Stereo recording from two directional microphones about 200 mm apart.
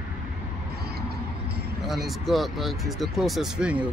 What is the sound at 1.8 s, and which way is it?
Speech, centre (ahead or behind).